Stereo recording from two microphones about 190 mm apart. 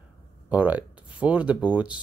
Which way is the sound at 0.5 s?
10° right (ahead or behind).